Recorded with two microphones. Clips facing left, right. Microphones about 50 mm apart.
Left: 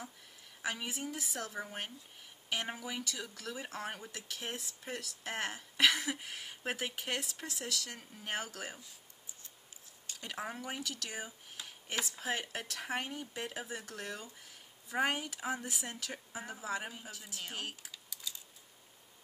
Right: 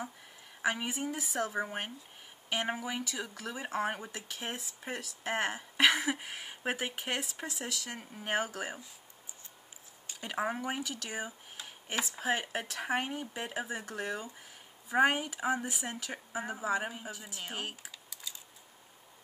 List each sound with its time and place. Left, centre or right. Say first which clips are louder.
0.6 s a woman's voice: right 6 dB; right
10.0 s speech: right 7 dB; centre